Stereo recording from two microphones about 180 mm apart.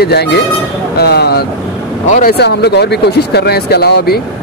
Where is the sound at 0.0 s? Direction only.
65° left (ahead or behind).